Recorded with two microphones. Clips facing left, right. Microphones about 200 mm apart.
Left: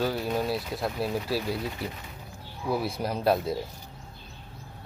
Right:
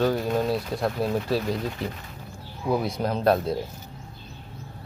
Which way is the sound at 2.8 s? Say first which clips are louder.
Right 4 dB; 10° left (ahead or behind).